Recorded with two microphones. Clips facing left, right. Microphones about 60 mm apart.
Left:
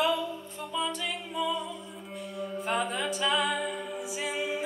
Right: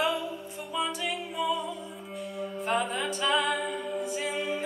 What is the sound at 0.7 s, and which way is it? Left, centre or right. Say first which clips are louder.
A capella: right 1 dB; centre.